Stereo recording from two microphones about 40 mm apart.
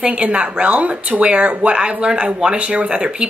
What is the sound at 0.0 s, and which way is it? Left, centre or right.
A woman's voice, right.